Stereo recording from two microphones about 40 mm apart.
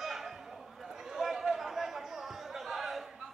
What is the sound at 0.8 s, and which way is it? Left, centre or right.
Chatter, centre.